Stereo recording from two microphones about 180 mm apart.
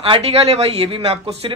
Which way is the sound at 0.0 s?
35° right (ahead or behind).